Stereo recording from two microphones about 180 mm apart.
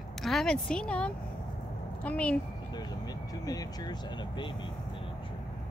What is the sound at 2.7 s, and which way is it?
Speech, 20° left (ahead or behind).